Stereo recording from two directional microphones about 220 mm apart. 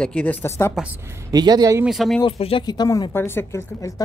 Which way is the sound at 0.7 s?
10° right (ahead or behind).